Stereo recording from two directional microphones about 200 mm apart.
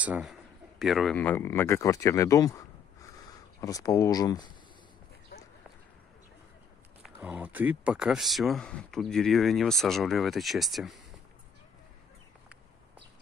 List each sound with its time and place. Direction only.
0.0 s a man's voice: 5° right (ahead or behind); by 2.6 s 15° left (ahead or behind)
3.6 s a man's voice: 15° left (ahead or behind)
7.0 s speech: 5° right (ahead or behind)